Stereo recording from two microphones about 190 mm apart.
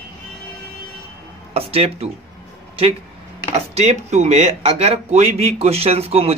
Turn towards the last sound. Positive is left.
turn(degrees=-30)  # may be behind; listen again after turning